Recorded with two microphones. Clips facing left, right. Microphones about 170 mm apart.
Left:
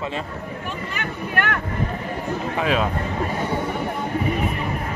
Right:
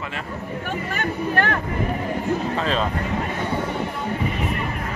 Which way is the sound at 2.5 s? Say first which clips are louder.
Left 1 dB; 10° left (ahead or behind).